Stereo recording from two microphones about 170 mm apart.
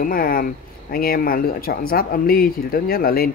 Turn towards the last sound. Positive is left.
turn(degrees=60)  # may be behind; listen again after turning